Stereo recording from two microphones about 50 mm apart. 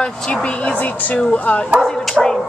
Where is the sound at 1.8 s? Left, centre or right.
Centre.